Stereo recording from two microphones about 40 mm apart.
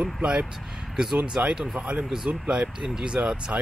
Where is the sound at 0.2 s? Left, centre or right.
Right.